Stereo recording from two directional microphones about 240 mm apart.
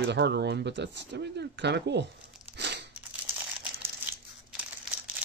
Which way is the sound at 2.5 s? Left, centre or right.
Right.